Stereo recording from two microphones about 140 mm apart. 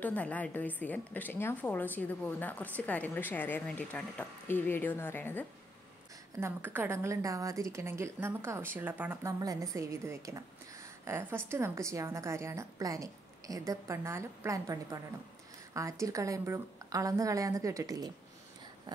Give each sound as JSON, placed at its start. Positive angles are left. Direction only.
{"t": 0.0, "sound": "a woman's voice", "side_deg": 10}
{"t": 6.4, "sound": "a woman's voice", "side_deg": -15}
{"t": 9.2, "sound": "a woman's voice", "side_deg": -25}